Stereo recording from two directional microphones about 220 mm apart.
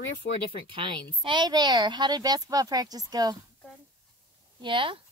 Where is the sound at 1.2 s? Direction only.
20° right (ahead or behind).